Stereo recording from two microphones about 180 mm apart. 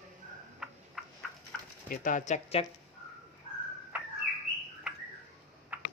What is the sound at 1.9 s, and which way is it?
Speech, 45° left (ahead or behind).